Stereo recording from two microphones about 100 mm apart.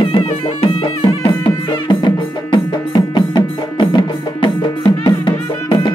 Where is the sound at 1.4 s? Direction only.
50° left (ahead or behind).